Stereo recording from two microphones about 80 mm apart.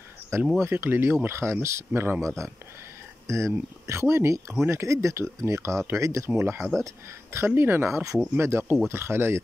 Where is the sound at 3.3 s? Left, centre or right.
Right.